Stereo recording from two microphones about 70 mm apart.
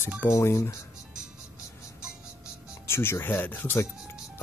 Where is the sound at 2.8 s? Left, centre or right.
Left.